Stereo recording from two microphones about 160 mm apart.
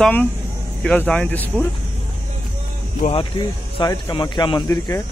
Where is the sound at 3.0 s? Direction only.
30° left (ahead or behind).